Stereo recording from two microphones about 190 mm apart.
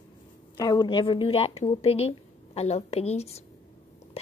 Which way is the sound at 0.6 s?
20° left (ahead or behind).